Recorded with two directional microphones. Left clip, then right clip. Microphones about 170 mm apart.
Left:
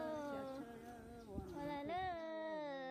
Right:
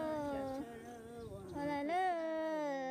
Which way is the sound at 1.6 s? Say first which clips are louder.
Right 8 dB; 30° right (ahead or behind).